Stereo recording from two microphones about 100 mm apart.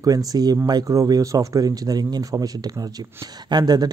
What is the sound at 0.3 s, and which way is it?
Speech, 40° right (ahead or behind).